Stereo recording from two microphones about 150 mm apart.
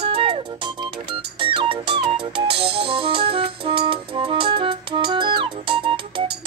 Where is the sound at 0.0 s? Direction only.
40° right (ahead or behind).